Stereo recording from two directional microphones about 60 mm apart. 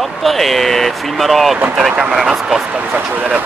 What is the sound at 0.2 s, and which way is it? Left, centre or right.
Speech, centre.